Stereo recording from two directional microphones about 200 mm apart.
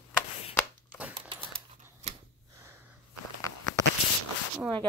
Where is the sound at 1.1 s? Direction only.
25° right (ahead or behind).